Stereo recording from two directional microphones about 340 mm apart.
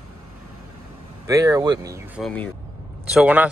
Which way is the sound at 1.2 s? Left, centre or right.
Centre.